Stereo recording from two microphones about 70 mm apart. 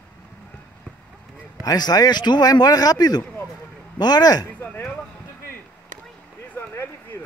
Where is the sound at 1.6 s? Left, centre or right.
Left.